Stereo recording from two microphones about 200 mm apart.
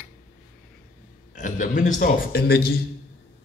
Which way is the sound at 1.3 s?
40° left (ahead or behind).